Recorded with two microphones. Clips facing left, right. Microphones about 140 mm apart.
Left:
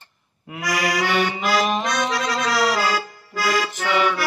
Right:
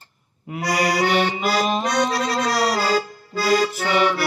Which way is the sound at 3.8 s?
35° right (ahead or behind).